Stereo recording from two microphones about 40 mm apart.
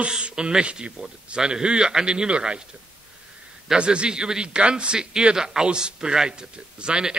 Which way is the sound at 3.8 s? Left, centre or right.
Right.